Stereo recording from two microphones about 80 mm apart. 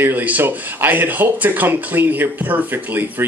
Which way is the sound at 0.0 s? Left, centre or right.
Right.